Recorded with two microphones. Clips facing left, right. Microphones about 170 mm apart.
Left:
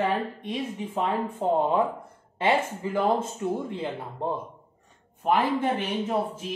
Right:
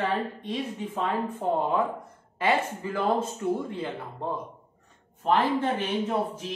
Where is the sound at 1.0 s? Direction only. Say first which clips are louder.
Left 2 dB; 25° left (ahead or behind).